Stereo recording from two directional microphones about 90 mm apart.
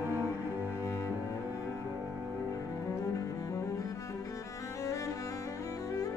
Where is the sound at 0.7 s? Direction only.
35° left (ahead or behind).